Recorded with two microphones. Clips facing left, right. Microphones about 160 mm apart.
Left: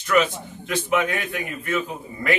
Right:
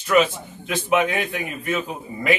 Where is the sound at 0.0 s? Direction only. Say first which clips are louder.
Right 2 dB; 20° right (ahead or behind).